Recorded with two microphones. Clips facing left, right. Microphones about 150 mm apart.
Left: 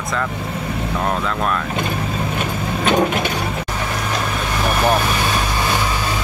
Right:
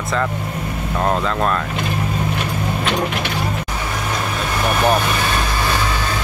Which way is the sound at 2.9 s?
45° left (ahead or behind).